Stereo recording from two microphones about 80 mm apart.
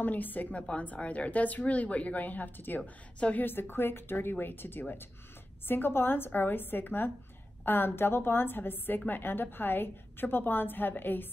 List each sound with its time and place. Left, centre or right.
0.0 s a woman's voice: left